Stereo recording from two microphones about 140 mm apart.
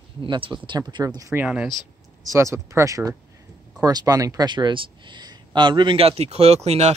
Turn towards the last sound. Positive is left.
turn(degrees=-50)  # may be behind; listen again after turning